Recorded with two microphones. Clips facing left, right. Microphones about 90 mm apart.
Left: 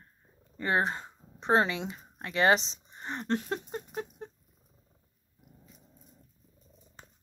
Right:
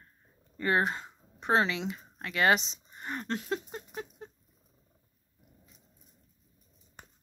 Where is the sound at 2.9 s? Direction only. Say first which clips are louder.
Even; 25° left (ahead or behind).